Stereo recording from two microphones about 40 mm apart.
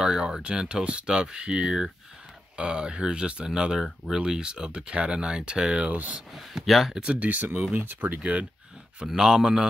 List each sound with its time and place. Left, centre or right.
0.0 s a man's voice: right
5.9 s speech: right
6.3 s speech: centre
7.2 s speech: right
7.7 s speech: right
8.2 s speech: right
9.0 s a man's voice: centre